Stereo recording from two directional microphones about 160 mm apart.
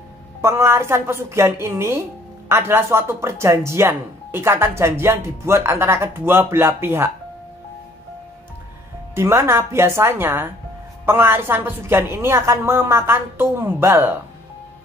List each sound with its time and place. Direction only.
0.4 s a woman's voice: 15° right (ahead or behind)
9.1 s a woman's voice: 15° right (ahead or behind)